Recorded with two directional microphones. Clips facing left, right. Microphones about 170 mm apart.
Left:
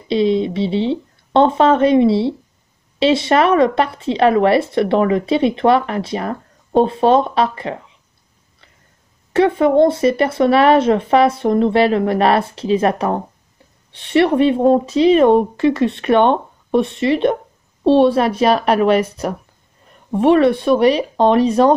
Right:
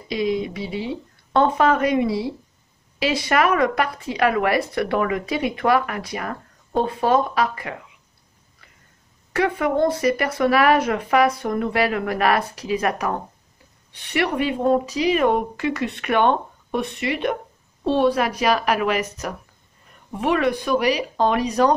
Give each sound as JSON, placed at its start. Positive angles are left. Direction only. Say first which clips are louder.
{"t": 0.1, "sound": "speech", "louder": "left 7 dB", "side_deg": 30}
{"t": 9.3, "sound": "speech", "louder": "left 8 dB", "side_deg": 25}